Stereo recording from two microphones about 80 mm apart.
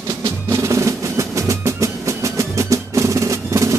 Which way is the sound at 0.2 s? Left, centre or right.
Right.